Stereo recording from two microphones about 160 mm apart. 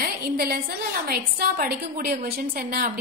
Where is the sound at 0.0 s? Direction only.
70° right (ahead or behind).